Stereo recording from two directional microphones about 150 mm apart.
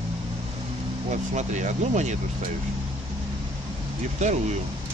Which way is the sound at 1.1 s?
55° right (ahead or behind).